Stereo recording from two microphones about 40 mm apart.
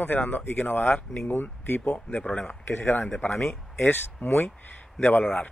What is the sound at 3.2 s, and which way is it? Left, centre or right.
A man's voice, left.